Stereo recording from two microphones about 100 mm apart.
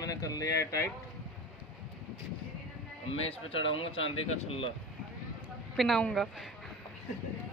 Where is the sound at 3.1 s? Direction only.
80° left.